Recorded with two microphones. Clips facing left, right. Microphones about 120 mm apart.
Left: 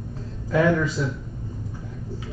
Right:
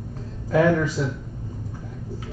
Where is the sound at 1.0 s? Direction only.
55° right (ahead or behind).